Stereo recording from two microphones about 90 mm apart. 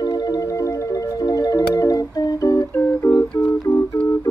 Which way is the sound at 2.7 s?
25° left (ahead or behind).